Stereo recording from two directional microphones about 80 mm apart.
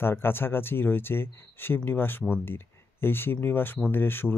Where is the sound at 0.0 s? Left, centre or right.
Left.